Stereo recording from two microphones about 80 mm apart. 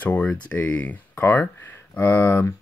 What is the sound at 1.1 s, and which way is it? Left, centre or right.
Speech, left.